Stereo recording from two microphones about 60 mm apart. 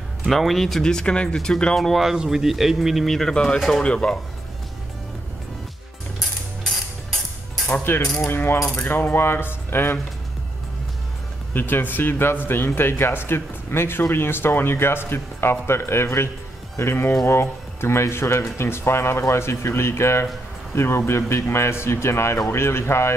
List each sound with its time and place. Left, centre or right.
0.3 s speech: centre
1.8 s speech: centre
3.8 s speech: centre
7.9 s speech: left
11.5 s speech: left